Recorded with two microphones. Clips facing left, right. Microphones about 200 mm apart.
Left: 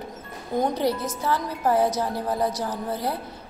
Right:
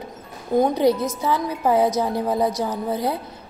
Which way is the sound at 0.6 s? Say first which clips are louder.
Right 6 dB; 15° right (ahead or behind).